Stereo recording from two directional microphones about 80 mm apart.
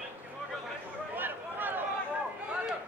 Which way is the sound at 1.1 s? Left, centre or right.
Right.